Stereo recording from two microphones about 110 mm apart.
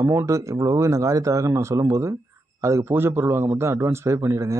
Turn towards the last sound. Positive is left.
turn(degrees=-25)  # may be behind; listen again after turning